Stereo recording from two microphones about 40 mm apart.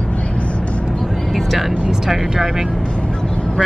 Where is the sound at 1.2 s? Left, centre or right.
Centre.